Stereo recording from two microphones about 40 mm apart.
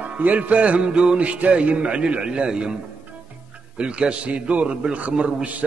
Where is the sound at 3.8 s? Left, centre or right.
Right.